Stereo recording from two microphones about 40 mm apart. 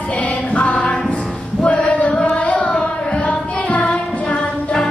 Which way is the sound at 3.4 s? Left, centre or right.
Left.